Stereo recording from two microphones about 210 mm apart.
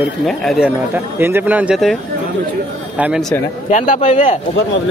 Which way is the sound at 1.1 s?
10° right (ahead or behind).